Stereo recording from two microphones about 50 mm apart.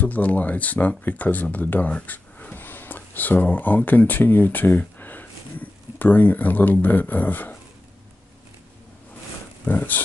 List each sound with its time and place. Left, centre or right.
0.0 s speech: left
9.7 s speech: left